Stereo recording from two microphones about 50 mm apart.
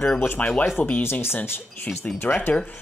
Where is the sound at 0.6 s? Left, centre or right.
Left.